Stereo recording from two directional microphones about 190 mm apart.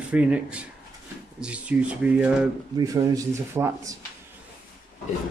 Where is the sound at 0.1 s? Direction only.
5° right (ahead or behind).